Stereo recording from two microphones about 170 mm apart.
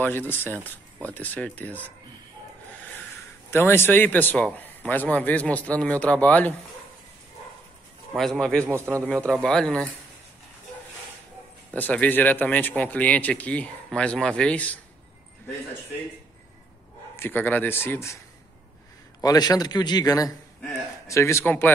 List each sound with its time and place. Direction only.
0.0 s speech: 10° left (ahead or behind)
3.4 s speech: 15° left (ahead or behind)
8.2 s speech: 5° left (ahead or behind)
8.6 s speech: 15° right (ahead or behind)
9.3 s speech: 5° left (ahead or behind)
11.7 s speech: 10° left (ahead or behind)
17.2 s speech: 10° left (ahead or behind)
19.2 s a man's voice: 25° left (ahead or behind)